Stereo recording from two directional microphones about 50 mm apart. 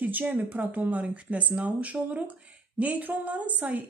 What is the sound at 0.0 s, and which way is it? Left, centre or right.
Speech, right.